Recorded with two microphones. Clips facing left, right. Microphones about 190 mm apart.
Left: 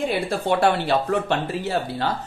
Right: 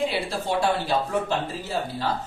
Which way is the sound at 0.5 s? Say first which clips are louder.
Left 4 dB; 65° left (ahead or behind).